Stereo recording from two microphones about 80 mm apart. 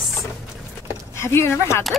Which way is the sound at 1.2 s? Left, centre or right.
Left.